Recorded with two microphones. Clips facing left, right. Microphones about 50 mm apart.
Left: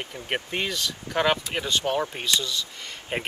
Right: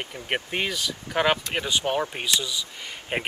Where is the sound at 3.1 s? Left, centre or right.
Right.